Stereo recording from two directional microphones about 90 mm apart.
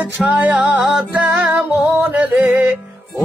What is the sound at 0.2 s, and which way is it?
Music, 15° right (ahead or behind).